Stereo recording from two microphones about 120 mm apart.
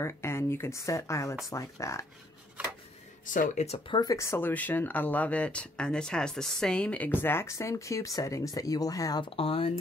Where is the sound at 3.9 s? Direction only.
30° left (ahead or behind).